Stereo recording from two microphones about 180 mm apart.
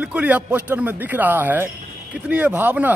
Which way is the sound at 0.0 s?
10° right (ahead or behind).